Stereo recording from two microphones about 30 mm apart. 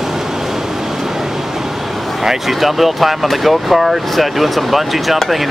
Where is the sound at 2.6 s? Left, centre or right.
Centre.